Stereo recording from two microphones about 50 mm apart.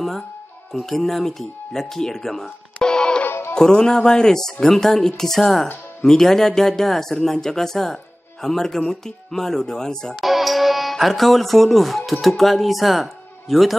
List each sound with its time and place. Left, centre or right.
0.7 s speech: centre
3.3 s music: left
3.5 s speech: centre
10.2 s music: centre
12.1 s speech: centre